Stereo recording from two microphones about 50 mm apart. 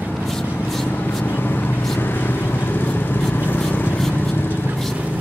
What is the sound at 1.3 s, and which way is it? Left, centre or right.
Vehicle, left.